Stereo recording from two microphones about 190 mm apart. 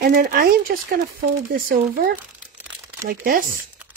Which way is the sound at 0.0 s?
55° right (ahead or behind).